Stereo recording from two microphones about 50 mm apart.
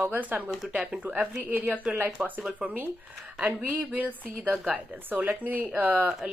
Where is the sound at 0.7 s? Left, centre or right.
Centre.